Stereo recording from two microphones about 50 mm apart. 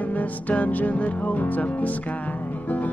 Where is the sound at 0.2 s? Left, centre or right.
Left.